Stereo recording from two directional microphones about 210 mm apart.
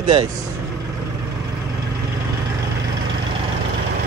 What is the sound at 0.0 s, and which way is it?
Speech, 20° right (ahead or behind).